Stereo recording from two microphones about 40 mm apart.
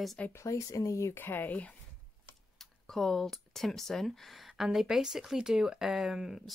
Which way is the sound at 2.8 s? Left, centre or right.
Centre.